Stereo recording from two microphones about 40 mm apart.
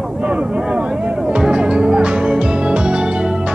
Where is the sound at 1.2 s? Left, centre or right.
Right.